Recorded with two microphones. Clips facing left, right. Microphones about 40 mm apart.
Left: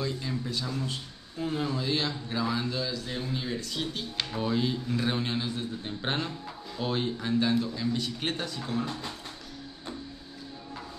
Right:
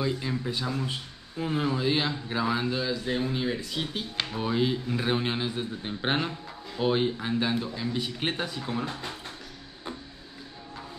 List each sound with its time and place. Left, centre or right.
0.0 s speech: right